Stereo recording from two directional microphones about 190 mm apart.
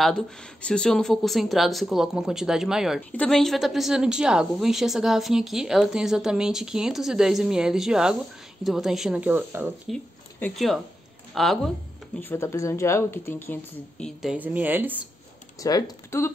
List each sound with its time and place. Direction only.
0.0 s speech: 5° left (ahead or behind)
9.8 s speech: 5° left (ahead or behind)
12.2 s speech: 10° left (ahead or behind)
14.3 s a woman's voice: 10° right (ahead or behind)
15.6 s speech: 15° left (ahead or behind)